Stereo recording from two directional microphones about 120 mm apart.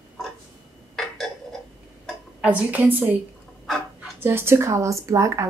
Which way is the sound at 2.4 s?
10° right (ahead or behind).